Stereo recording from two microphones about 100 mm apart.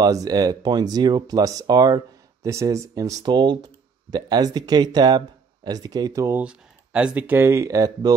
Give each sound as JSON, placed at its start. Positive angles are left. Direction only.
{"t": 0.0, "sound": "speech", "side_deg": -40}
{"t": 6.4, "sound": "speech", "side_deg": -10}